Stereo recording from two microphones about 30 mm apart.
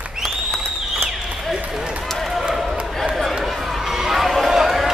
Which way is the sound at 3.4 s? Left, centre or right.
Centre.